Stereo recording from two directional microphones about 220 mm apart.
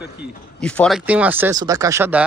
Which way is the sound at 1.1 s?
5° right (ahead or behind).